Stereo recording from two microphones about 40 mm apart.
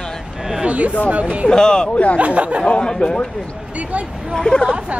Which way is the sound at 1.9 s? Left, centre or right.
Left.